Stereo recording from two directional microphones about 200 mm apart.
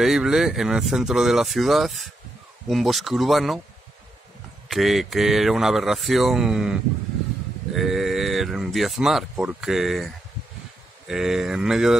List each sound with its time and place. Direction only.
0.0 s speech: centre (ahead or behind)
4.6 s speech: centre (ahead or behind)
11.1 s speech: centre (ahead or behind)